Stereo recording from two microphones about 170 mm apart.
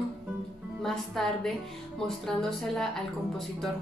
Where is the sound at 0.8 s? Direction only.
Centre (ahead or behind).